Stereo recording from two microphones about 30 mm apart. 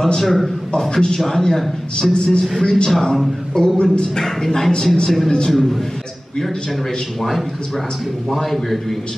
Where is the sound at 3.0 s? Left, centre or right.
Centre.